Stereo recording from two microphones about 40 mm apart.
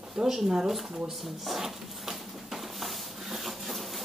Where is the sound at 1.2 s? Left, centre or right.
Centre.